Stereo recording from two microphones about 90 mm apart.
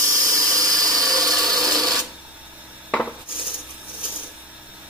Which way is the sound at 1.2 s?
5° left (ahead or behind).